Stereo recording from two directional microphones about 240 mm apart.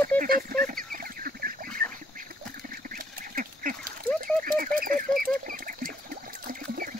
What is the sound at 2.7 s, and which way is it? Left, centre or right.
Duck, right.